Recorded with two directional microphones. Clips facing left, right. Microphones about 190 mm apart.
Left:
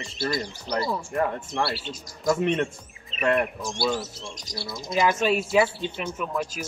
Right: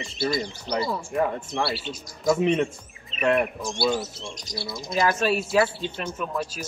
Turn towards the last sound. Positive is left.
turn(degrees=10)  # may be behind; listen again after turning